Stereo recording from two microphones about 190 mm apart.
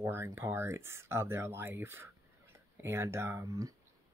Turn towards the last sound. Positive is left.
turn(degrees=-15)  # may be behind; listen again after turning